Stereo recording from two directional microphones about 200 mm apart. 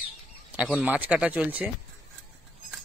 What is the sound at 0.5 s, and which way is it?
A man's voice, 5° right (ahead or behind).